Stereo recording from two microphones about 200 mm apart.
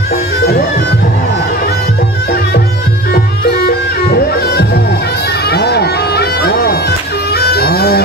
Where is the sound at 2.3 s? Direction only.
55° left (ahead or behind).